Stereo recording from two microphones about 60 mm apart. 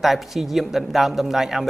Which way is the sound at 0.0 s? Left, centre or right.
Centre.